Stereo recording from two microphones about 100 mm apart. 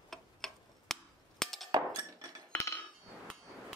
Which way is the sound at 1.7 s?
40° right (ahead or behind).